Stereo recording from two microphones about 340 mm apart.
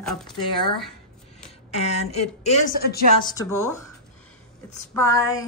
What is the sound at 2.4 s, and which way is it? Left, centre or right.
Speech, left.